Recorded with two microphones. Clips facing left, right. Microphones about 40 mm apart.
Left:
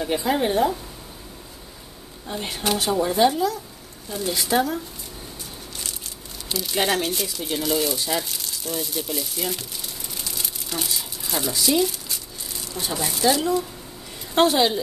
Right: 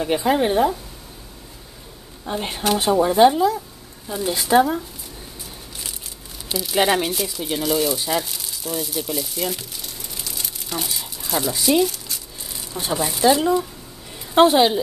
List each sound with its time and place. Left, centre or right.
0.0 s speech: centre
2.2 s speech: right
5.8 s crumpling: centre
7.1 s speech: centre
11.9 s a sound: centre
12.7 s speech: centre
13.0 s speech: centre
13.3 s a woman's voice: right